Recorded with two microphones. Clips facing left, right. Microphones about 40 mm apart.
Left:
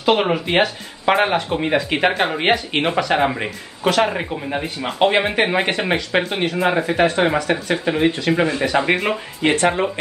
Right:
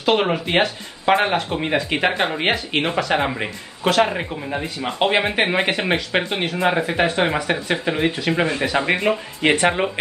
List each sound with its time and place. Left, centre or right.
0.0 s speech: centre
7.2 s speech: centre
9.4 s speech: right